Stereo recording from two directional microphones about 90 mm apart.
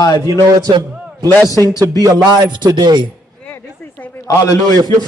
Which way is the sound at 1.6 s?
40° right (ahead or behind).